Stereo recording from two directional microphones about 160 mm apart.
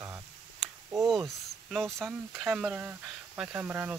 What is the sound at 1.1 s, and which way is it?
Speech, centre (ahead or behind).